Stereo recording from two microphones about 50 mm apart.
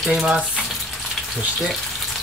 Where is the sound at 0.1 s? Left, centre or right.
Centre.